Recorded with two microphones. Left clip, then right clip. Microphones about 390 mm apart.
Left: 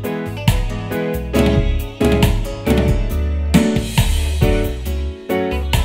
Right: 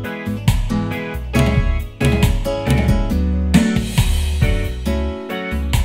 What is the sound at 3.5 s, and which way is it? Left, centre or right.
Music, left.